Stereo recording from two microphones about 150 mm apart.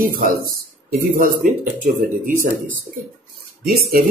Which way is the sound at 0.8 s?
65° right (ahead or behind).